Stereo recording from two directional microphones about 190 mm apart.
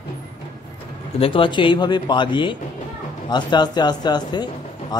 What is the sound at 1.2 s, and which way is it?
Speech, 25° left (ahead or behind).